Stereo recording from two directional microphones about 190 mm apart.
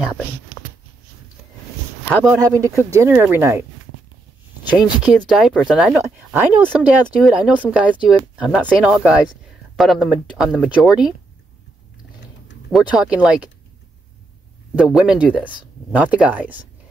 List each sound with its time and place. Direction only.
2.0 s speech: 15° right (ahead or behind)
5.0 s speech: centre (ahead or behind)
12.7 s speech: 5° right (ahead or behind)
14.8 s speech: 5° right (ahead or behind)